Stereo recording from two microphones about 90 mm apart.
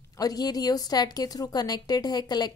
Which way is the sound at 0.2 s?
45° left (ahead or behind).